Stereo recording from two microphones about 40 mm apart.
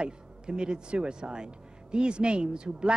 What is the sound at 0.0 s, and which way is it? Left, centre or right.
Speech, right.